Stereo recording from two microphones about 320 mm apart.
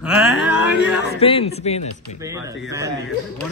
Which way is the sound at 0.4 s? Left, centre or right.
Left.